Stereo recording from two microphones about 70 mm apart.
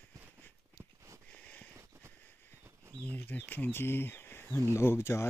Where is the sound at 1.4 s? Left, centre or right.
Centre.